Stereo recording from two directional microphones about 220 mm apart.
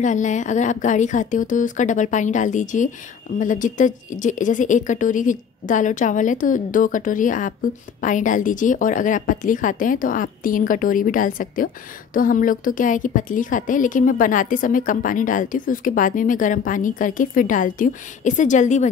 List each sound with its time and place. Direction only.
0.0 s a woman's voice: 35° left (ahead or behind)